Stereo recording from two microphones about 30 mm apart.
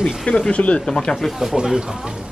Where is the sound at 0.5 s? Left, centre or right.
Left.